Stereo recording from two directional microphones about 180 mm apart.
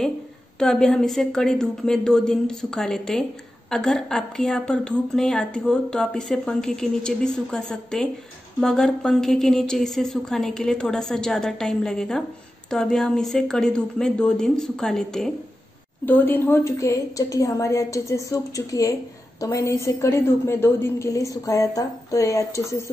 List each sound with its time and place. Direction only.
0.6 s a woman's voice: 5° left (ahead or behind)